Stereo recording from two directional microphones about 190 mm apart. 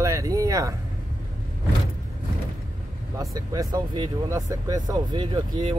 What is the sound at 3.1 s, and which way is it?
Speech, 15° right (ahead or behind).